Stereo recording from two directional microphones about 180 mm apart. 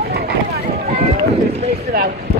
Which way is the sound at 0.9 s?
35° right (ahead or behind).